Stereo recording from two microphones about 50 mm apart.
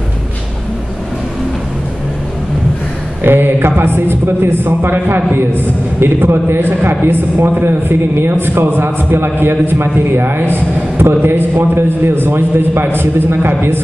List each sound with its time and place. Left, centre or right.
3.3 s a man's voice: right